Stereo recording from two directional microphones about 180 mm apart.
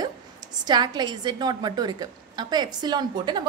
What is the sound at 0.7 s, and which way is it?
A woman's voice, 25° right (ahead or behind).